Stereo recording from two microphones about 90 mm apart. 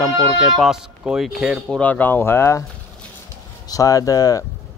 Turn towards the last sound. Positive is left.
turn(degrees=40)  # may be behind; listen again after turning